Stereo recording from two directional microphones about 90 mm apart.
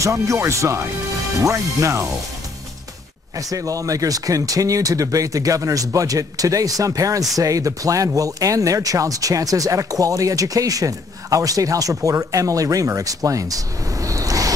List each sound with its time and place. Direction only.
0.0 s speech: 35° right (ahead or behind)
3.3 s speech: 40° right (ahead or behind)